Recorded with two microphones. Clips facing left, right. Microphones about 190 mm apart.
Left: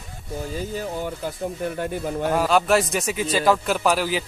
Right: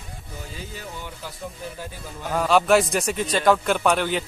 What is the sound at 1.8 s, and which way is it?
Speech, 60° left (ahead or behind).